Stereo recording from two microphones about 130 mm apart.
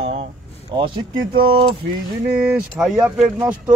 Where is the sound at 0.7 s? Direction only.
35° right (ahead or behind).